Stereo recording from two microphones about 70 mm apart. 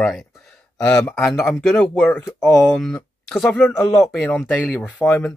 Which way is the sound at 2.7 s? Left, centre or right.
Centre.